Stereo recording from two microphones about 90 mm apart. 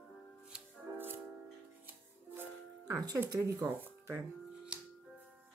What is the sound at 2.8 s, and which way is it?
Music, 40° right (ahead or behind).